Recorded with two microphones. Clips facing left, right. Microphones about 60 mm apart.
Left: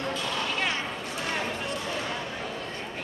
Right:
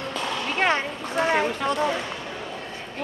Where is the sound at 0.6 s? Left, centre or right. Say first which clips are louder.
Right 7 dB; right.